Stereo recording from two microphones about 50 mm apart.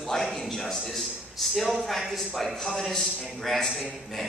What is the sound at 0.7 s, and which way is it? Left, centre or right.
A man's voice, centre.